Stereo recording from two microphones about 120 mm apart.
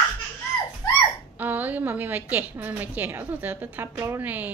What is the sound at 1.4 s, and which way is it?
A woman's voice, 15° right (ahead or behind).